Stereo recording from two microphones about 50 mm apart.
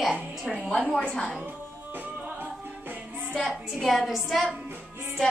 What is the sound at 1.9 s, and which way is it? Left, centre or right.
Music, right.